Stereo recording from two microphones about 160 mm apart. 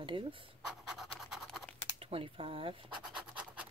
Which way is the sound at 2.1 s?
35° right (ahead or behind).